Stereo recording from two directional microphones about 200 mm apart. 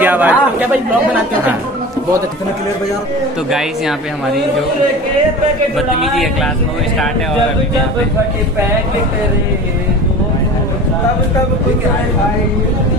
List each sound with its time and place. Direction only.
0.0 s speech: 10° right (ahead or behind)
5.8 s speech: centre (ahead or behind)